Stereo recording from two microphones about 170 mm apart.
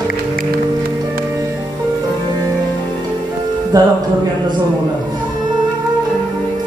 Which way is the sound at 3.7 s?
20° right (ahead or behind).